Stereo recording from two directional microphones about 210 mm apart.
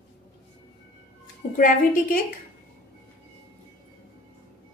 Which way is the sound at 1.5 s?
40° left (ahead or behind).